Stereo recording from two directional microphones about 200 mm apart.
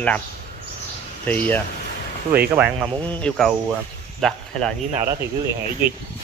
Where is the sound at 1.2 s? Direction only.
10° left (ahead or behind).